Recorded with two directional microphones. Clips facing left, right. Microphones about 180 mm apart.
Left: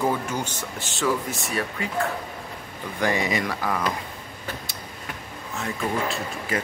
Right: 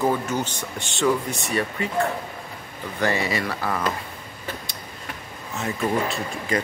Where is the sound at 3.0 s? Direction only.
15° left (ahead or behind).